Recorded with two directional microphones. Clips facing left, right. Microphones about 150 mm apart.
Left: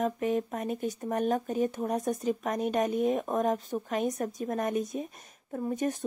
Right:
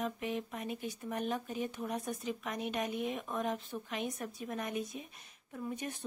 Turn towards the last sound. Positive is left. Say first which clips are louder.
# left 10 dB
turn(degrees=45)  # may be behind; listen again after turning